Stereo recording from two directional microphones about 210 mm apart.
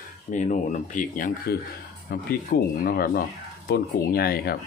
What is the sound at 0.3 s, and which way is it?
Speech, 35° left (ahead or behind).